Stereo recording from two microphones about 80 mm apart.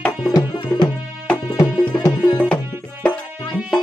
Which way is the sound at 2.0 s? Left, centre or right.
Left.